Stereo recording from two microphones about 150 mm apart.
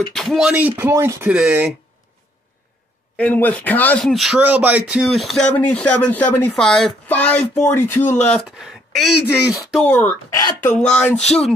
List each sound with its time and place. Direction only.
0.1 s speech: centre (ahead or behind)
0.5 s speech: 10° right (ahead or behind)
1.3 s speech: 5° right (ahead or behind)
3.2 s speech: 10° left (ahead or behind)
8.2 s speech: 5° left (ahead or behind)
9.8 s speech: 10° left (ahead or behind)